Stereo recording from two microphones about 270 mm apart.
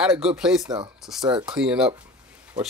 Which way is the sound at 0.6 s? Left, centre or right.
Centre.